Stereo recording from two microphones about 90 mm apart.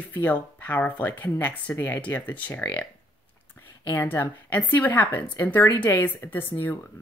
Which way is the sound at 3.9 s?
30° left (ahead or behind).